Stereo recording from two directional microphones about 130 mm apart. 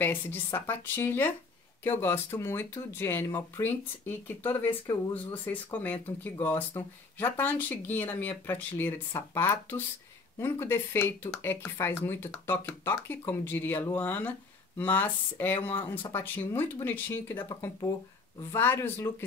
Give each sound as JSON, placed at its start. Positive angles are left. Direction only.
{"t": 0.0, "sound": "speech", "side_deg": 15}
{"t": 4.6, "sound": "speech", "side_deg": 30}
{"t": 5.1, "sound": "speech", "side_deg": 15}
{"t": 17.5, "sound": "speech", "side_deg": 25}